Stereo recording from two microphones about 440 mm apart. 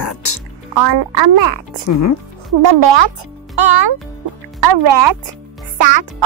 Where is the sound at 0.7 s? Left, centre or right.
Right.